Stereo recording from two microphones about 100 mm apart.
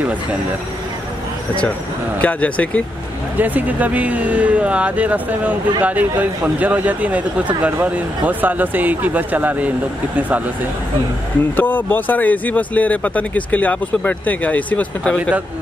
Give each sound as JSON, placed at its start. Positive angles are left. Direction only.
{"t": 2.2, "sound": "speech", "side_deg": 15}
{"t": 3.3, "sound": "speech", "side_deg": -15}
{"t": 11.5, "sound": "speech", "side_deg": 20}